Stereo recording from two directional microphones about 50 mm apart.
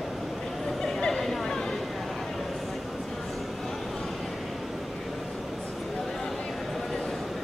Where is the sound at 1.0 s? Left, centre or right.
Centre.